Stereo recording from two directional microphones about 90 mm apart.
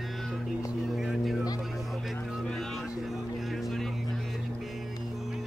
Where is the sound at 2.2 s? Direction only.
5° left (ahead or behind).